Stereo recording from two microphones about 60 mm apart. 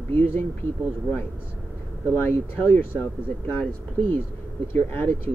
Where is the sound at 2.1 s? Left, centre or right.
Left.